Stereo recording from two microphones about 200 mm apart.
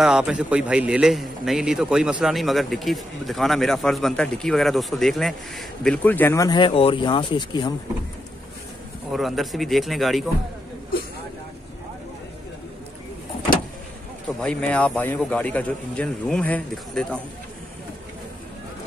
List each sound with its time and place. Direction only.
0.0 s a man's voice: 5° right (ahead or behind); by 7.7 s 25° left (ahead or behind)
9.1 s a man's voice: centre (ahead or behind)
14.2 s a man's voice: 5° left (ahead or behind)